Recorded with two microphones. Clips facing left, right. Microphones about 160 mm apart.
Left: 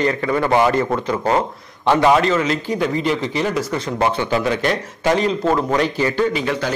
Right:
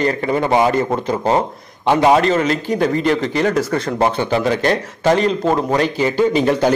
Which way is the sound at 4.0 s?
35° right (ahead or behind).